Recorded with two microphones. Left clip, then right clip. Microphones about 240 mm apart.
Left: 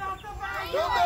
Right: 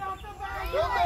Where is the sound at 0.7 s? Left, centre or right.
Left.